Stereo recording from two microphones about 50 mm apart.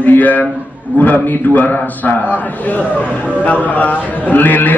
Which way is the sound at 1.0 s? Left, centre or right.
Left.